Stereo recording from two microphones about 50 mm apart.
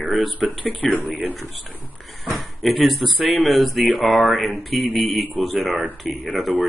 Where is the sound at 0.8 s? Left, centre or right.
Left.